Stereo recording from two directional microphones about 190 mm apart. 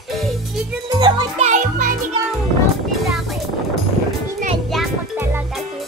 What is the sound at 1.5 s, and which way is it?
Music, 40° right (ahead or behind).